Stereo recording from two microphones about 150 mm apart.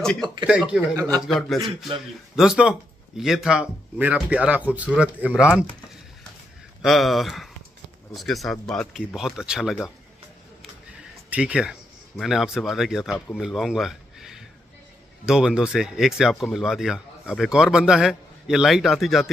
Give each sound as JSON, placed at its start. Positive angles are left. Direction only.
{"t": 0.0, "sound": "speech", "side_deg": 5}
{"t": 0.5, "sound": "speech", "side_deg": -5}
{"t": 6.8, "sound": "speech", "side_deg": 0}
{"t": 11.2, "sound": "speech", "side_deg": -10}